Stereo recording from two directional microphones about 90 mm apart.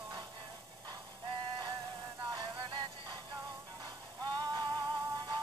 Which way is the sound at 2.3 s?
50° right (ahead or behind).